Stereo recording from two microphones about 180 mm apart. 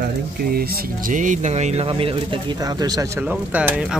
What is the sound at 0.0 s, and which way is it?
Speech, 55° right (ahead or behind).